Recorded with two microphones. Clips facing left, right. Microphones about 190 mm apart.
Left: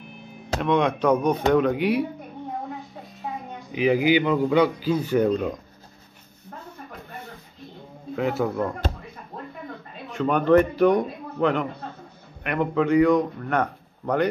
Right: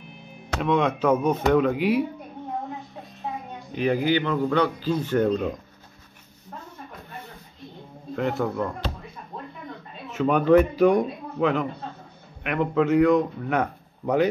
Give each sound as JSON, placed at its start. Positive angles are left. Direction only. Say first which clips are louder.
{"t": 0.6, "sound": "speech", "louder": "left 1 dB", "side_deg": 0}
{"t": 3.7, "sound": "a man's voice", "louder": "left 3 dB", "side_deg": 10}
{"t": 8.2, "sound": "speech", "louder": "left 1 dB", "side_deg": 5}
{"t": 10.1, "sound": "speech", "louder": "even", "side_deg": -5}